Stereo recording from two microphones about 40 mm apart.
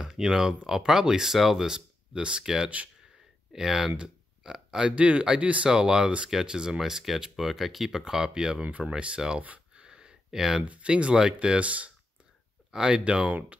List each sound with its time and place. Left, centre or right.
0.0 s speech: centre
2.1 s speech: right
2.4 s speech: centre; by 5.7 s right
5.7 s speech: centre
8.6 s speech: right
9.8 s a sound: centre
10.6 s speech: right
13.3 s speech: right